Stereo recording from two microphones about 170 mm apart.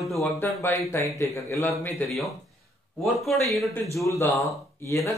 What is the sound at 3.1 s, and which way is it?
Speech, centre (ahead or behind).